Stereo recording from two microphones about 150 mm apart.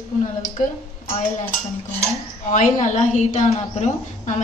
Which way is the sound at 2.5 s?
55° left (ahead or behind).